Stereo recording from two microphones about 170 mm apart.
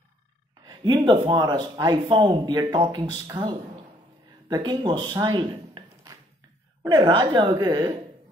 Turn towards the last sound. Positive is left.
turn(degrees=-25)  # may be behind; listen again after turning